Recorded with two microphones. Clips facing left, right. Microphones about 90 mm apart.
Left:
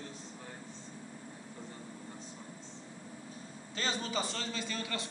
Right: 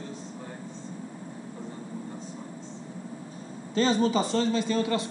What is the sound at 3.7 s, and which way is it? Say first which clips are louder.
A man's voice: right 13 dB; 30° right (ahead or behind).